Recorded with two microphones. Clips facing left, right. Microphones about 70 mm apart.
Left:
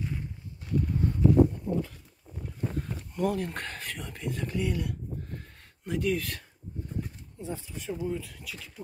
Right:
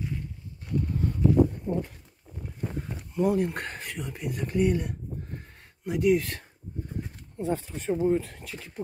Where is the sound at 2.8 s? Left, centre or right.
Centre.